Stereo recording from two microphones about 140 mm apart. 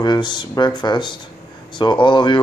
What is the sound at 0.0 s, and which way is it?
Speech, 30° left (ahead or behind).